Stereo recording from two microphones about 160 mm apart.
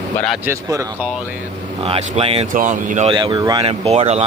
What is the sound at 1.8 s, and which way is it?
Speech, 35° right (ahead or behind).